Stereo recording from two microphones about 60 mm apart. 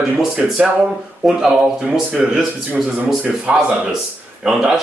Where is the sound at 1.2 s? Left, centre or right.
Centre.